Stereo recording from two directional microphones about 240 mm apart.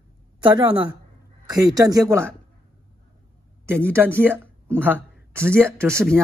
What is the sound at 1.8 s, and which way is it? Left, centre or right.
Speech, centre.